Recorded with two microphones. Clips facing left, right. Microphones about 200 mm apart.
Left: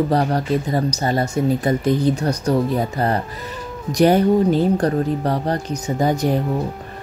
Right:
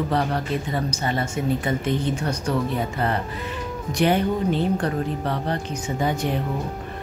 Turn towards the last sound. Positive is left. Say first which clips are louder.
# left 5 dB
turn(degrees=40)  # may be behind; listen again after turning